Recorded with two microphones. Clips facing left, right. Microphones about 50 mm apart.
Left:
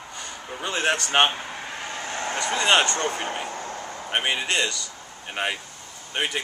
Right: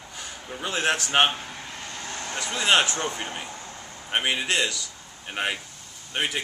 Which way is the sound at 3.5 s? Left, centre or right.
Left.